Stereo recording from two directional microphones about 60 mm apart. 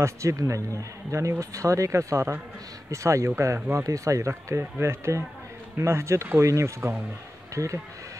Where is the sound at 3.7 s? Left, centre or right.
Right.